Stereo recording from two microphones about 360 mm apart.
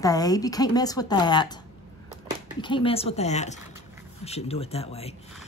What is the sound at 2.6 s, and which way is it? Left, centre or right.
Speech, centre.